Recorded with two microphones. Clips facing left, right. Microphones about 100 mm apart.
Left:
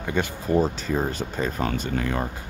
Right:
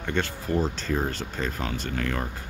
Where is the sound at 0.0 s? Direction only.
15° left (ahead or behind).